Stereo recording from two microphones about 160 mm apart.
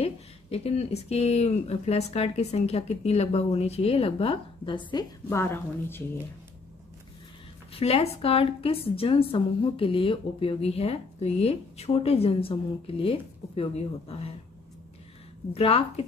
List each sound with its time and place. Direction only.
0.0 s a woman's voice: 40° left (ahead or behind)
5.3 s a woman's voice: 15° left (ahead or behind)
7.7 s a woman's voice: 40° left (ahead or behind)
15.5 s a woman's voice: 35° left (ahead or behind)